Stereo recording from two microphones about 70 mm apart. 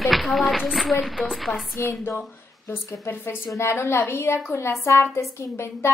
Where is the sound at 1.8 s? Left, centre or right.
Left.